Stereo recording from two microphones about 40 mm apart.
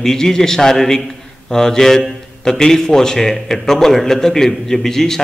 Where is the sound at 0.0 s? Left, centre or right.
Centre.